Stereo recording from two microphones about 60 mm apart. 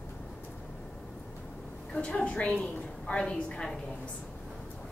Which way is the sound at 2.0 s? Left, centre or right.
Centre.